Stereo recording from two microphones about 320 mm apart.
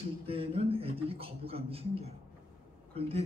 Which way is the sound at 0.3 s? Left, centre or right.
Centre.